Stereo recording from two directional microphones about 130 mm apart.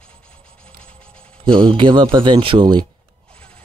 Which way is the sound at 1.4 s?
40° right (ahead or behind).